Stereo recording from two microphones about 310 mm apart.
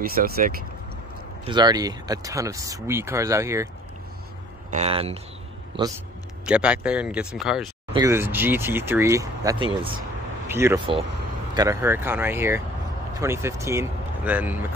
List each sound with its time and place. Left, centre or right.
0.0 s speech: right
1.4 s speech: centre
4.6 s speech: right
6.4 s speech: centre